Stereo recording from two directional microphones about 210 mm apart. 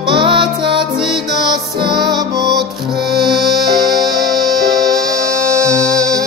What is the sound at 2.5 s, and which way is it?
Music, centre (ahead or behind).